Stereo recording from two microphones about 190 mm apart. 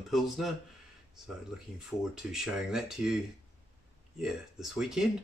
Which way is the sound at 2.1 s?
5° right (ahead or behind).